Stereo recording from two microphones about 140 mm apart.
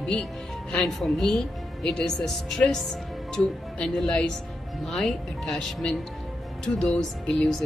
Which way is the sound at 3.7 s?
5° left (ahead or behind).